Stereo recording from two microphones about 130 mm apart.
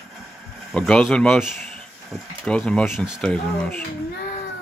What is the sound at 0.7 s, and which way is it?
Speech, 5° left (ahead or behind).